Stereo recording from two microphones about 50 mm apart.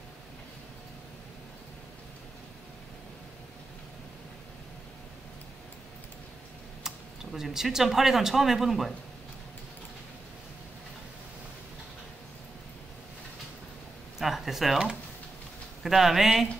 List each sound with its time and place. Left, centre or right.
7.3 s speech: centre
14.1 s a sound: centre
15.8 s speech: centre